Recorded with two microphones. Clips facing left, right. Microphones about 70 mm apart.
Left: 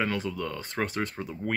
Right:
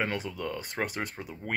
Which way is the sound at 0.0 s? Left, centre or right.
Right.